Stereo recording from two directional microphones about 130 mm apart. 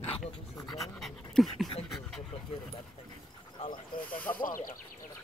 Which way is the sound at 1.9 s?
5° left (ahead or behind).